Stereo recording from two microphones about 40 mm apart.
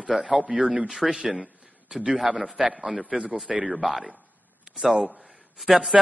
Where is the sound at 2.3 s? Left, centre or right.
Right.